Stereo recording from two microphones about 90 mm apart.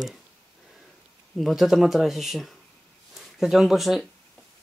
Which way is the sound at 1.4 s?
Centre (ahead or behind).